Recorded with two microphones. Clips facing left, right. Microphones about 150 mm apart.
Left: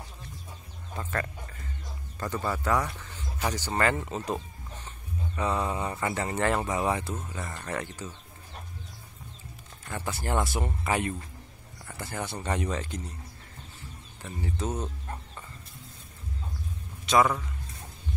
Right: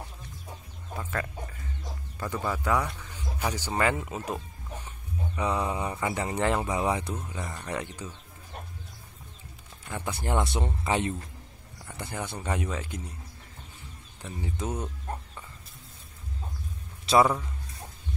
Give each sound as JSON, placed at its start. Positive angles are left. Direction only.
{"t": 0.9, "sound": "speech", "side_deg": -5}
{"t": 9.9, "sound": "speech", "side_deg": -15}
{"t": 12.4, "sound": "speech", "side_deg": -5}
{"t": 14.2, "sound": "speech", "side_deg": -15}
{"t": 17.0, "sound": "a sound", "side_deg": -30}